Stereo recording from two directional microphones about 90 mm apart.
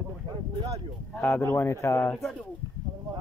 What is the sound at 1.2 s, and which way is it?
Speech, 25° left (ahead or behind).